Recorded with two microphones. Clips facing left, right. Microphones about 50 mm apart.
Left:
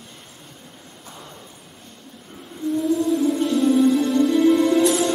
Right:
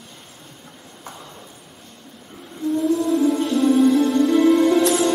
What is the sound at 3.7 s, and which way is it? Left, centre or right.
Music, right.